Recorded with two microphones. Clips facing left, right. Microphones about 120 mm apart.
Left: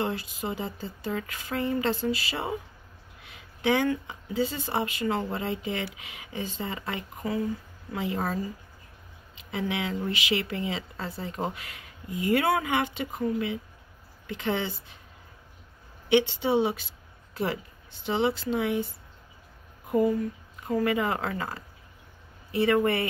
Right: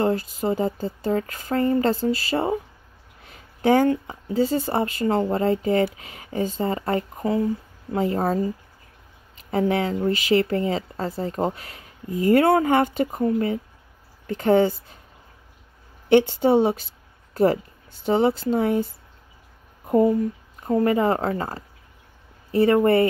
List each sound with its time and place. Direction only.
0.0 s speech: 40° right (ahead or behind)
16.1 s a woman's voice: 45° right (ahead or behind)
17.3 s a sound: 40° right (ahead or behind)
18.0 s speech: 40° right (ahead or behind)
19.9 s speech: 35° right (ahead or behind)